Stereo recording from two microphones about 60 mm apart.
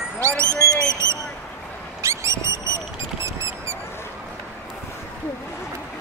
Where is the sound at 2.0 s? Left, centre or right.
Right.